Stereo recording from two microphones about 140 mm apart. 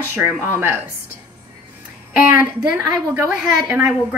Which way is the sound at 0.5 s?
15° right (ahead or behind).